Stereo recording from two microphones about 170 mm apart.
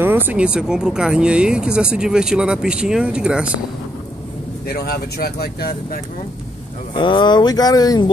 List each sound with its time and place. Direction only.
0.0 s speech: 10° right (ahead or behind)
4.6 s speech: 65° left (ahead or behind)
6.9 s speech: 30° left (ahead or behind)